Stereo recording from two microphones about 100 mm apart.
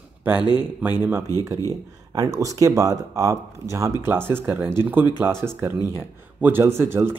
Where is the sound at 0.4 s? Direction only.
45° left (ahead or behind).